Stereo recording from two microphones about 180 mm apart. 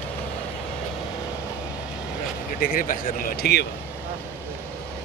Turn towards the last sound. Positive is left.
turn(degrees=60)  # may be behind; listen again after turning